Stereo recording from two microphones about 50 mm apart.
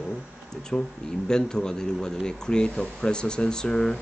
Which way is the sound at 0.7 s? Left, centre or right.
Centre.